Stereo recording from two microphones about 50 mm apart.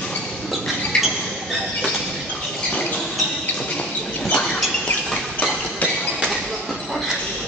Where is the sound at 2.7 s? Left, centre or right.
Left.